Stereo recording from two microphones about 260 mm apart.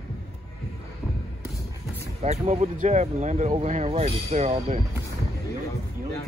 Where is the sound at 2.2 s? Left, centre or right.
Right.